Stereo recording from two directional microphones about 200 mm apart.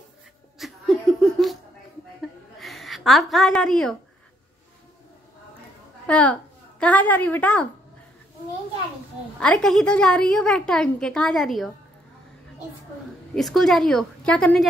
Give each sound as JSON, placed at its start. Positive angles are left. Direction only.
{"t": 0.6, "sound": "laughter", "side_deg": 0}
{"t": 2.6, "sound": "a woman's voice", "side_deg": 0}
{"t": 6.0, "sound": "a woman's voice", "side_deg": 5}
{"t": 9.4, "sound": "a woman's voice", "side_deg": 5}
{"t": 13.3, "sound": "a woman's voice", "side_deg": 0}